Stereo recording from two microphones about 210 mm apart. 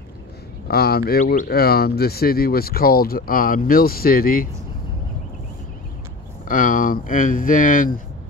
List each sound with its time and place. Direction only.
0.7 s speech: 50° left (ahead or behind)
6.4 s speech: 40° left (ahead or behind)